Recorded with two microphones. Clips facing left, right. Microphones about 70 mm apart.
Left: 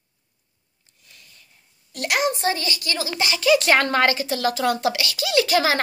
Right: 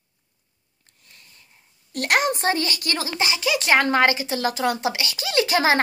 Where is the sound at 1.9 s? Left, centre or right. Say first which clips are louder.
Right 1 dB; right.